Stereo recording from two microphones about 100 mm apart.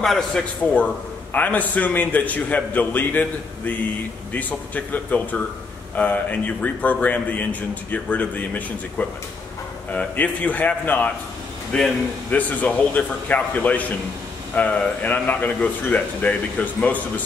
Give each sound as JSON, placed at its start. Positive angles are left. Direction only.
{"t": 0.0, "sound": "a man's voice", "side_deg": 5}